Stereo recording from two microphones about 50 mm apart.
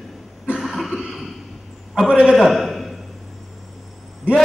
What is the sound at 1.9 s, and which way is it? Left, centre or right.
Speech, centre.